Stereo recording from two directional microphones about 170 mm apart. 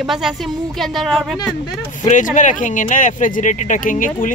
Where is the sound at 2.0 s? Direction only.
50° left (ahead or behind).